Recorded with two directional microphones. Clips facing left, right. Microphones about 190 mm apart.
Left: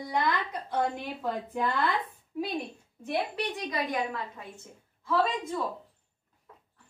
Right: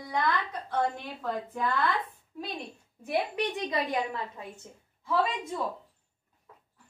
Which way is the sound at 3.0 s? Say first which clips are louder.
Right 1 dB; 20° right (ahead or behind).